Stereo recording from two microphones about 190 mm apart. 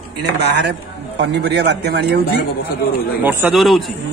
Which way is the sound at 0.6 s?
65° right (ahead or behind).